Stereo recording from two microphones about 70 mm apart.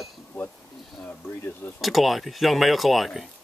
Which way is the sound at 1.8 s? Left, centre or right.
Centre.